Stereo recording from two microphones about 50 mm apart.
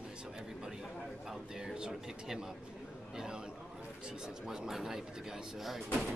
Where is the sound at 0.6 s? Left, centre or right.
Centre.